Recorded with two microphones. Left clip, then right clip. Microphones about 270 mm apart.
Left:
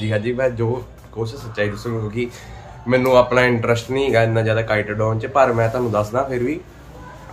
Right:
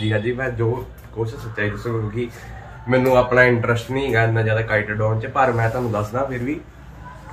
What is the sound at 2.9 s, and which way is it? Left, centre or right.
Speech, centre.